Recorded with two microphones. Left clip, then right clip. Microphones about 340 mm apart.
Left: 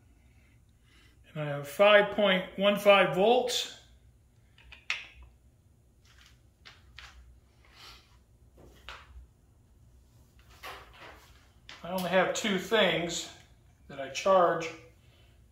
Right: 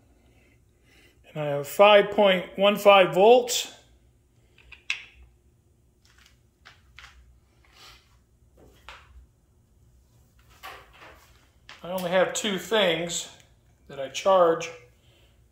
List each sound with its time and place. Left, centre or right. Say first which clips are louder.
0.8 s speech: right 6 dB; centre
11.8 s speech: right 4 dB; right